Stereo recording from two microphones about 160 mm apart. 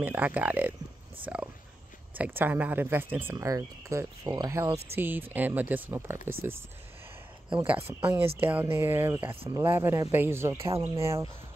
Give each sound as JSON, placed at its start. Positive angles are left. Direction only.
{"t": 0.0, "sound": "speech", "side_deg": -10}
{"t": 1.2, "sound": "dog", "side_deg": -10}
{"t": 2.1, "sound": "speech", "side_deg": -10}
{"t": 4.9, "sound": "speech", "side_deg": -10}
{"t": 8.4, "sound": "speech", "side_deg": -10}